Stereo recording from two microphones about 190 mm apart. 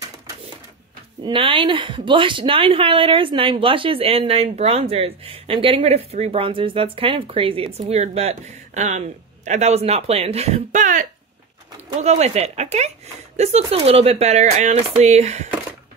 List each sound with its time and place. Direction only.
1.2 s a woman's voice: 25° right (ahead or behind)